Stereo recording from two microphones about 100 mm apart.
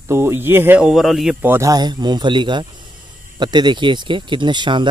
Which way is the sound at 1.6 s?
40° right (ahead or behind).